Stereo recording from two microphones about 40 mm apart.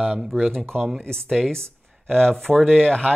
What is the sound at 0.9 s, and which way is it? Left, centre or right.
Speech, centre.